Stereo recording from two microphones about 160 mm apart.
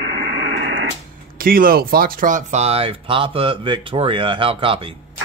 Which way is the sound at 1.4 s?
65° right (ahead or behind).